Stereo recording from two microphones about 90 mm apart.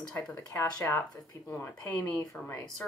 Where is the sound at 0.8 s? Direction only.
25° left (ahead or behind).